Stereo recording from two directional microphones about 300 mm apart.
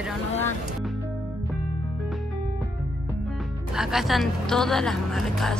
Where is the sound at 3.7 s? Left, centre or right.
Centre.